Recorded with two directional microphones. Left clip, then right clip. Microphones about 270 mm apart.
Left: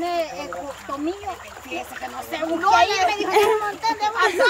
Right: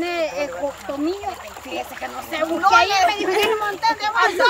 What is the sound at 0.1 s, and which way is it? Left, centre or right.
Rowboat, centre.